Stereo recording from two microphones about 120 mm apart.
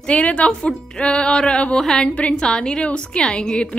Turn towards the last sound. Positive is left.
turn(degrees=5)  # may be behind; listen again after turning